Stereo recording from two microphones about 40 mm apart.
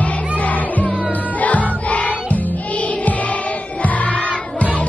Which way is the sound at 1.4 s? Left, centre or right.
Left.